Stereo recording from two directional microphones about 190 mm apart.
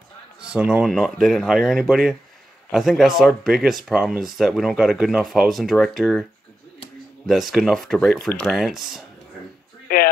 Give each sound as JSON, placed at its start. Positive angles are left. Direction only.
{"t": 0.5, "sound": "speech", "side_deg": -5}
{"t": 7.2, "sound": "speech", "side_deg": 0}
{"t": 9.9, "sound": "a sound", "side_deg": 50}